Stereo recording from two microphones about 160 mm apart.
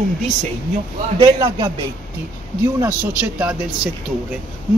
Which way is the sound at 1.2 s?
30° right (ahead or behind).